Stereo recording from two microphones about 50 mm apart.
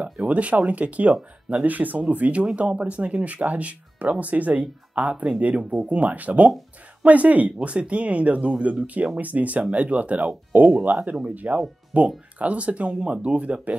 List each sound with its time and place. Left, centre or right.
0.0 s speech: right